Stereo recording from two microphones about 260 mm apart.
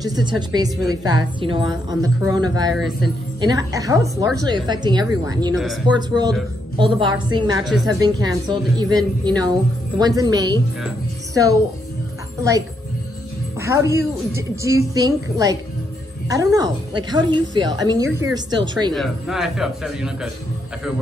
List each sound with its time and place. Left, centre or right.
0.0 s a woman's voice: centre
13.6 s a woman's voice: centre
18.9 s a man's voice: centre